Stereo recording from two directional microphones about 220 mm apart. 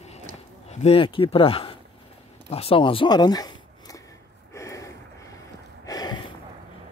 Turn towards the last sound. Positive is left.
turn(degrees=15)  # may be behind; listen again after turning